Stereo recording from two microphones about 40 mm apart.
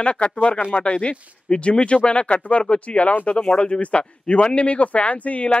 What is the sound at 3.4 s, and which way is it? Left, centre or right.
Speech, left.